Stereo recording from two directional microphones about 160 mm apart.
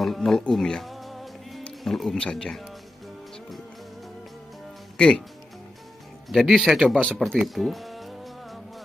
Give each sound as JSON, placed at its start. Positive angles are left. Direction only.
{"t": 0.0, "sound": "speech", "side_deg": 0}
{"t": 4.9, "sound": "speech", "side_deg": 5}
{"t": 6.2, "sound": "speech", "side_deg": 0}